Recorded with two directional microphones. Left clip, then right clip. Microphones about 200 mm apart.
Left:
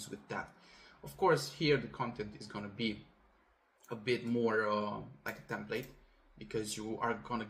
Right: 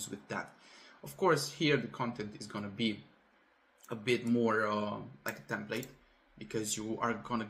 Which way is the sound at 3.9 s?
15° right (ahead or behind).